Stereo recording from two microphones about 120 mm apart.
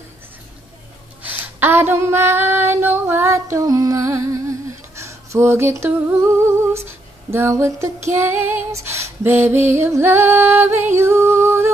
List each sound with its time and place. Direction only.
1.2 s female singing: 15° right (ahead or behind)
11.0 s music: 20° right (ahead or behind)